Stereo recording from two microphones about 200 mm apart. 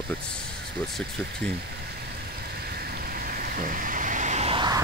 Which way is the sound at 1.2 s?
5° left (ahead or behind).